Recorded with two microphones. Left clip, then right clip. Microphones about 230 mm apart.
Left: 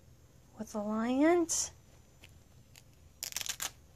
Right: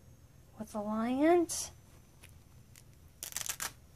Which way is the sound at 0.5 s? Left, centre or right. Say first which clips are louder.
Left 1 dB; left.